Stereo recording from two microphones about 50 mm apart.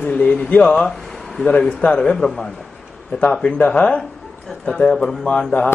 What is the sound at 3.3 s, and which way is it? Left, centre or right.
Speech, left.